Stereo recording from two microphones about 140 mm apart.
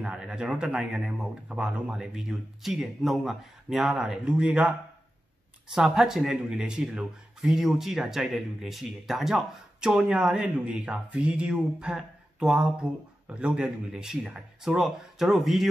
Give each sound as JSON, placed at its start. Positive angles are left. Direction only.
{"t": 0.0, "sound": "speech", "side_deg": -5}